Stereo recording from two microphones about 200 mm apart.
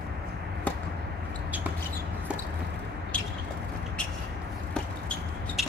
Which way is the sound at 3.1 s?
5° left (ahead or behind).